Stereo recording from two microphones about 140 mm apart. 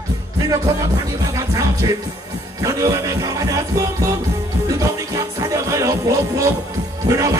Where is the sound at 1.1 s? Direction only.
25° right (ahead or behind).